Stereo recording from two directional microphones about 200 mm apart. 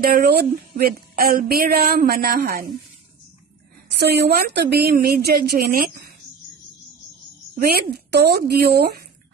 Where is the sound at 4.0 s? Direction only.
55° right (ahead or behind).